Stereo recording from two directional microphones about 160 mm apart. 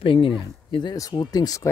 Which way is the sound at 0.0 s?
35° left (ahead or behind).